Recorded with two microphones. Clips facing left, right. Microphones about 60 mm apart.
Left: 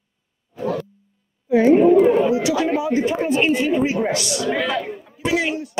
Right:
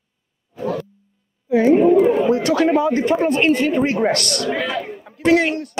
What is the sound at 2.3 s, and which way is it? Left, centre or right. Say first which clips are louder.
A man's voice: right 3 dB; right.